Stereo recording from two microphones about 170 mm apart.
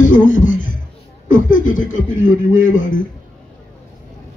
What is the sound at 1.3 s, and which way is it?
Speech, 50° left (ahead or behind).